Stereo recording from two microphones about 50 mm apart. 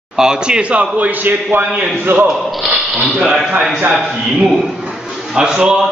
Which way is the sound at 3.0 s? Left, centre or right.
Centre.